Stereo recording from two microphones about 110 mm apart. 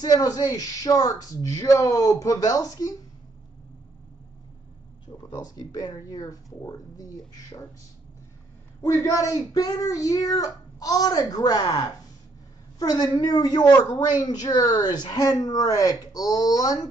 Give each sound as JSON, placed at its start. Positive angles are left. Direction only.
{"t": 0.0, "sound": "speech", "side_deg": 35}
{"t": 5.3, "sound": "speech", "side_deg": 35}
{"t": 8.8, "sound": "speech", "side_deg": 25}